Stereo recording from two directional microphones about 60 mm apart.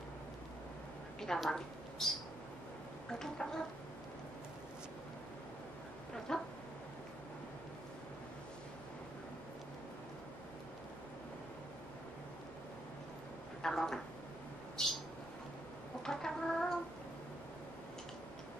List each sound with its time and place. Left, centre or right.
1.2 s a woman's voice: centre
3.1 s gargling: centre
6.1 s gargling: centre
13.6 s a woman's voice: centre
14.8 s bird: centre
16.0 s chicken: centre